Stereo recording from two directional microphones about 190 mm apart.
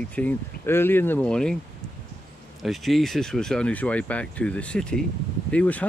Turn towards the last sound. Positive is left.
turn(degrees=5)  # may be behind; listen again after turning